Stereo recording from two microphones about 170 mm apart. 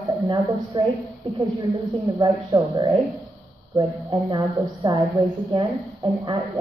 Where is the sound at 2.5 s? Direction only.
15° right (ahead or behind).